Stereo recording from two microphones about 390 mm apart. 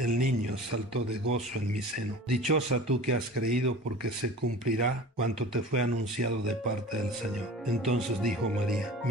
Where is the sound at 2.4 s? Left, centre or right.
Right.